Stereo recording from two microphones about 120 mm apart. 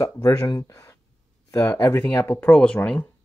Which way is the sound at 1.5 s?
20° left (ahead or behind).